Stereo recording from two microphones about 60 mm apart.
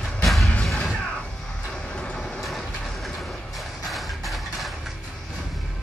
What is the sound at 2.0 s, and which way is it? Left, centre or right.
Vehicle, centre.